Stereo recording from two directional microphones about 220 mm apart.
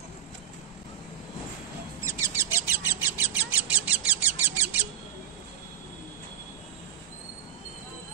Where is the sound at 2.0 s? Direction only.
10° right (ahead or behind).